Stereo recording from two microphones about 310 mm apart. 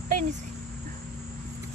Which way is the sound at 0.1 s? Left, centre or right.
Right.